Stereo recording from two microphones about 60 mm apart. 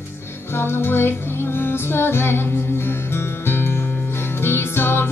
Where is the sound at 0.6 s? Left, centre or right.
Left.